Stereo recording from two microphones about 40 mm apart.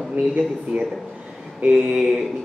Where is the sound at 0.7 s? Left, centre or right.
Right.